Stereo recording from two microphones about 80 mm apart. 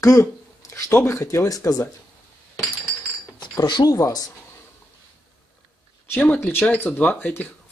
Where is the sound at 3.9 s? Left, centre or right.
Left.